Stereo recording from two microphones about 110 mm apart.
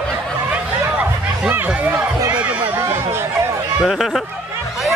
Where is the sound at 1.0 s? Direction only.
15° right (ahead or behind).